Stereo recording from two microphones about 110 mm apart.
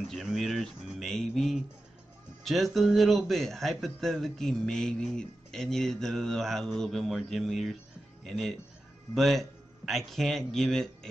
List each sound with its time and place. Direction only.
0.1 s a man's voice: centre (ahead or behind)